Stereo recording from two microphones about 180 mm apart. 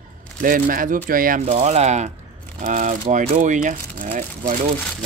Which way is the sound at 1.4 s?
35° right (ahead or behind).